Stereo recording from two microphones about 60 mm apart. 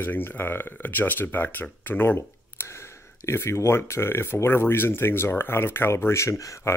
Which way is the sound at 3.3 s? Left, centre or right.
Left.